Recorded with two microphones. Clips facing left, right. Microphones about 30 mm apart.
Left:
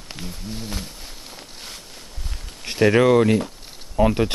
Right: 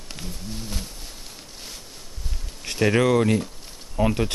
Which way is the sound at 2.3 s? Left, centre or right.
Left.